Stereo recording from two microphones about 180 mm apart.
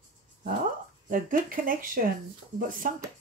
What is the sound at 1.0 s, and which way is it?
Speech, 50° right (ahead or behind).